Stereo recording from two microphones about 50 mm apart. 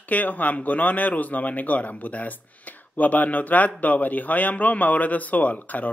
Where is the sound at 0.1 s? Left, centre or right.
Left.